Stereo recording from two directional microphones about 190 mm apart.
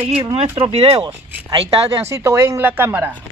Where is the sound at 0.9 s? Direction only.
20° right (ahead or behind).